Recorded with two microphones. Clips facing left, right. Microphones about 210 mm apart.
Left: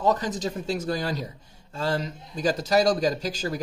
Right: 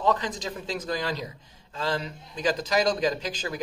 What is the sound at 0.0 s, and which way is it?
A man's voice, 45° left (ahead or behind).